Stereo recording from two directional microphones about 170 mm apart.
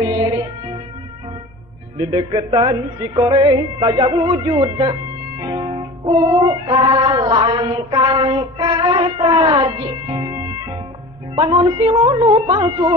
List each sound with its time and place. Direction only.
0.0 s music: 25° right (ahead or behind)
2.0 s music: 25° right (ahead or behind)